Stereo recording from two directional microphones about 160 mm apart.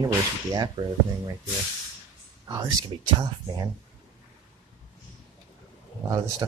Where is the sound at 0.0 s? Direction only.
20° right (ahead or behind).